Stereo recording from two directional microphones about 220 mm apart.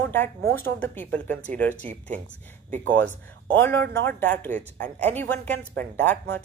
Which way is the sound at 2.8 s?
5° left (ahead or behind).